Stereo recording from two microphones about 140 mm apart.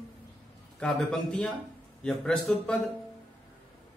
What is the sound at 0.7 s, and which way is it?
Speech, 5° left (ahead or behind).